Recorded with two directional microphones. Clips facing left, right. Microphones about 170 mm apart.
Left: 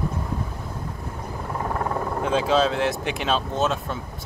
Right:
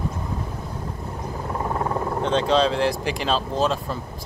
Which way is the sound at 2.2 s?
5° left (ahead or behind).